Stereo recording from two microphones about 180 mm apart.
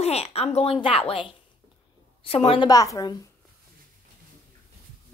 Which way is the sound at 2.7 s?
20° left (ahead or behind).